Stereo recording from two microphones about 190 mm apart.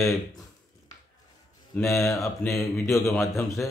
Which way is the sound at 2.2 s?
Centre (ahead or behind).